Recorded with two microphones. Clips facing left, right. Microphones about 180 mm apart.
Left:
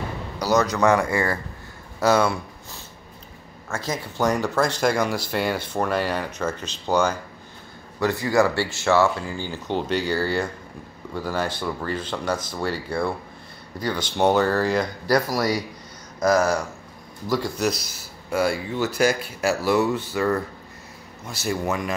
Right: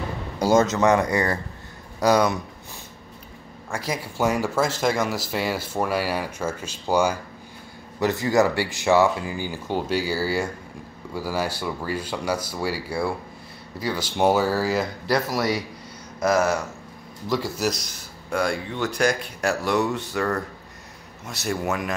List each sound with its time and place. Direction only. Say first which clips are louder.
0.4 s a man's voice: right 2 dB; 25° right (ahead or behind); by 15.4 s centre (ahead or behind)
17.3 s speech: left 1 dB; centre (ahead or behind)